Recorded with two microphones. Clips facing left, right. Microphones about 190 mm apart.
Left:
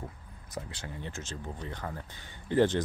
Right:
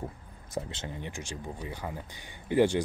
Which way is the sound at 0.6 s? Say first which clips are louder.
Right 4 dB; 25° right (ahead or behind).